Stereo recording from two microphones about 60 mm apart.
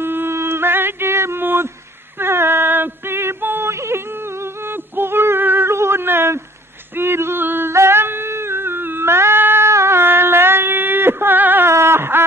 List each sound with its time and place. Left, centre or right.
0.0 s mantra: right
2.1 s a sound: right
7.0 s female singing: right
7.7 s cat: right
11.7 s whimper: right